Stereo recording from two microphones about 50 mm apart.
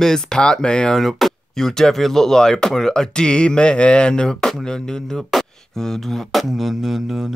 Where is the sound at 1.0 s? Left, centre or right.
Centre.